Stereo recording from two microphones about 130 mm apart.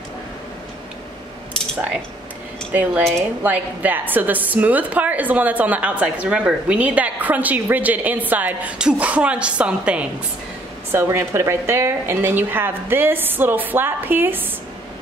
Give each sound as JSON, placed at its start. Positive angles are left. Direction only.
{"t": 2.7, "sound": "a woman's voice", "side_deg": -15}
{"t": 10.9, "sound": "a woman's voice", "side_deg": -20}